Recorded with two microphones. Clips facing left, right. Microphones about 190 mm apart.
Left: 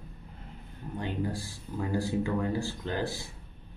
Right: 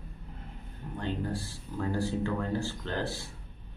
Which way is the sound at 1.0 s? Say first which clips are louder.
Even; 10° left (ahead or behind).